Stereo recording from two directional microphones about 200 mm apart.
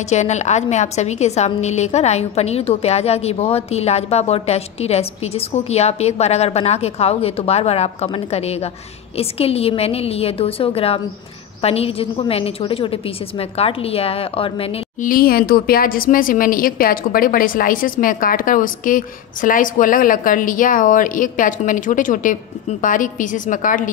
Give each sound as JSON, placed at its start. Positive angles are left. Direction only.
{"t": 0.1, "sound": "a woman's voice", "side_deg": 35}
{"t": 15.0, "sound": "speech", "side_deg": 45}